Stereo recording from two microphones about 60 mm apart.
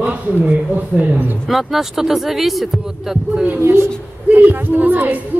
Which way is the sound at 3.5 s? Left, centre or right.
Right.